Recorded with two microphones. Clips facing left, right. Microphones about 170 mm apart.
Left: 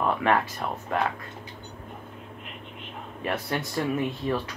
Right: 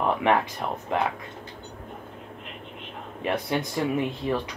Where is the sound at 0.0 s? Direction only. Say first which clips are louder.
Right 1 dB; 15° right (ahead or behind).